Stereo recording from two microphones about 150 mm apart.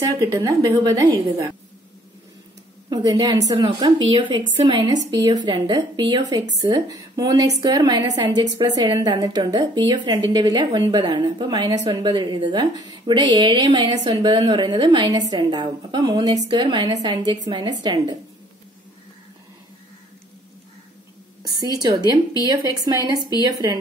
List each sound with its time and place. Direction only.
0.0 s a woman's voice: 25° right (ahead or behind)
2.9 s a woman's voice: 25° right (ahead or behind)
21.4 s a sound: 25° right (ahead or behind)
21.8 s a woman's voice: 25° right (ahead or behind)